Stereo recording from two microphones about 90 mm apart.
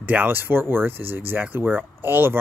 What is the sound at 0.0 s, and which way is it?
Speech, 20° right (ahead or behind).